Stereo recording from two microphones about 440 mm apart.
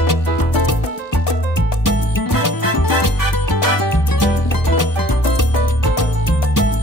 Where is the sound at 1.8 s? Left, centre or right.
Left.